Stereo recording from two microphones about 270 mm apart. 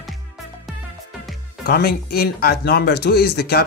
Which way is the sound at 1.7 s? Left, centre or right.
Left.